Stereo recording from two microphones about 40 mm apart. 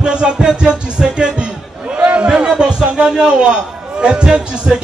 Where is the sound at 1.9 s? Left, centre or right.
Right.